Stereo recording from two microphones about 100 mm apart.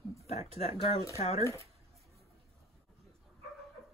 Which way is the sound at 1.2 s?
90° left.